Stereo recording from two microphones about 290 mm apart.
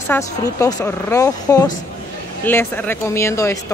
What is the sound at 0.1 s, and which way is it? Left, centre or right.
Speech, centre.